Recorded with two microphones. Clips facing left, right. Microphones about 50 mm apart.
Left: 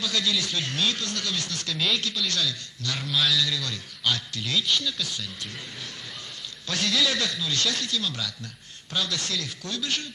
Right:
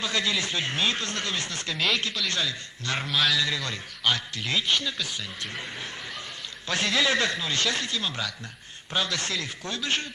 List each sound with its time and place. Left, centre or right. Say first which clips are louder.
0.0 s speech: even; right
6.7 s speech: right 1 dB; right